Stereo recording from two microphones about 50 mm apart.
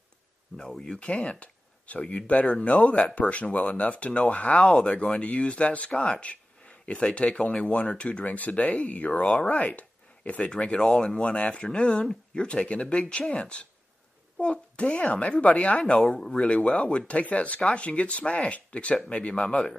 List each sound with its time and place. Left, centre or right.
0.6 s speech: centre
10.4 s speech: centre
16.4 s speech: centre